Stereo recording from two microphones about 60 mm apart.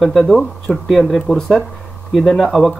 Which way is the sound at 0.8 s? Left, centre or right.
Centre.